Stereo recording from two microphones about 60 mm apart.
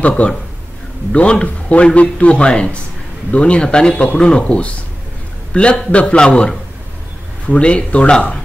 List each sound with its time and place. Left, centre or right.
0.0 s a man's voice: left